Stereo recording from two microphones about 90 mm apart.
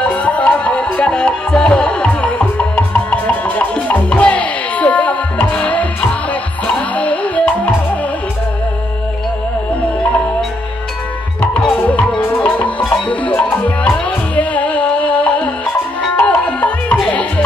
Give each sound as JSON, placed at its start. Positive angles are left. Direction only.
{"t": 0.0, "sound": "music", "side_deg": 15}
{"t": 11.8, "sound": "music", "side_deg": 25}